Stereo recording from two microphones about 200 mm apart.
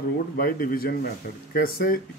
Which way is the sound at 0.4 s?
45° left (ahead or behind).